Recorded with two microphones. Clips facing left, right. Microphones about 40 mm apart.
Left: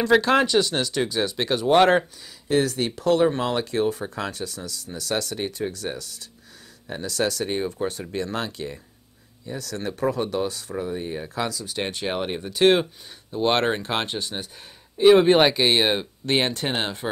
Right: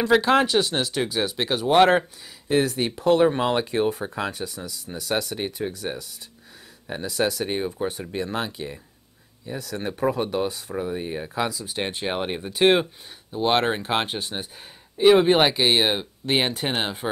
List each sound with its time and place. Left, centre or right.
0.0 s speech: centre
13.3 s speech: centre
15.0 s speech: centre